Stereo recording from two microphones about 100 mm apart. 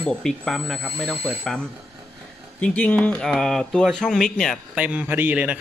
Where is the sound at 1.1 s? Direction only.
15° right (ahead or behind).